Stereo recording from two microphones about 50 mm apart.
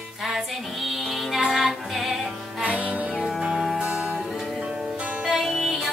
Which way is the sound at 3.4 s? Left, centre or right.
Centre.